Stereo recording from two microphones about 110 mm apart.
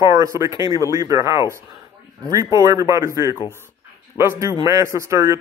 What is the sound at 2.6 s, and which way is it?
Speech, 30° right (ahead or behind).